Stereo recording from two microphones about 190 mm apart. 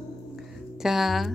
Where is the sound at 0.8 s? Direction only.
Centre (ahead or behind).